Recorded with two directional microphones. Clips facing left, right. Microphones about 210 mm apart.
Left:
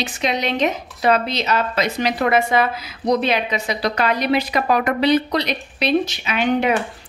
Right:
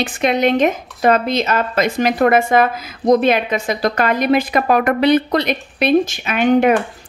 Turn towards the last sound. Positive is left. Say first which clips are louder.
# right 5 dB
turn(degrees=-50)  # may be behind; listen again after turning